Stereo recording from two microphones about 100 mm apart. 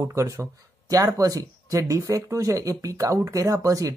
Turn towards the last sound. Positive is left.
turn(degrees=-35)  # may be behind; listen again after turning